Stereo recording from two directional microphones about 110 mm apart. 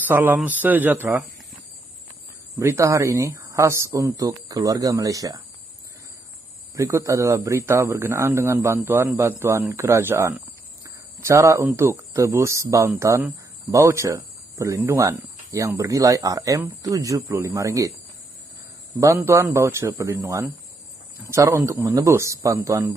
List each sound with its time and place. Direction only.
0.0 s speech: 20° right (ahead or behind)
2.6 s speech: 25° right (ahead or behind)
6.7 s speech: 30° right (ahead or behind)
10.8 s a sound: 25° right (ahead or behind)
12.3 s speech: 25° right (ahead or behind)
19.2 s speech: 25° right (ahead or behind)